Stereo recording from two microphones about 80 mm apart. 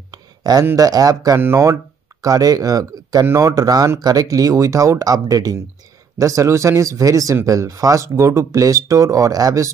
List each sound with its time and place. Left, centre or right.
0.1 s a sound: right
0.7 s speech: right
1.4 s speech: right
2.2 s speech: right